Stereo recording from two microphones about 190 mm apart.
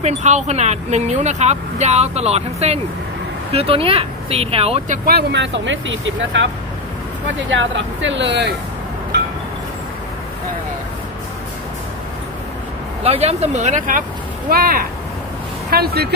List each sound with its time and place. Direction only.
0.0 s speech: 40° right (ahead or behind)
5.1 s speech: 70° right (ahead or behind)
13.0 s speech: 30° right (ahead or behind); by 16.1 s 55° right (ahead or behind)